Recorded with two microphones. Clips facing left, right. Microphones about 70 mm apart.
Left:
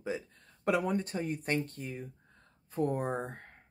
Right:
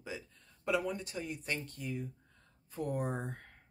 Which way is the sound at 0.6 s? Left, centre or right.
Left.